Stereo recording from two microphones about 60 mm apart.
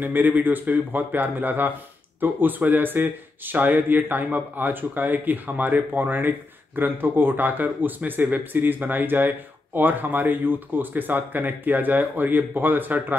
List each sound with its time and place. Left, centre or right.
0.0 s speech: right